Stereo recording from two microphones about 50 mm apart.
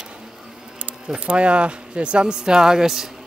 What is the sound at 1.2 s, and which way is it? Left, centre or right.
Speech, right.